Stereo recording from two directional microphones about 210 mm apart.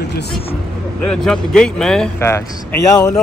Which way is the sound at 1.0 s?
5° left (ahead or behind).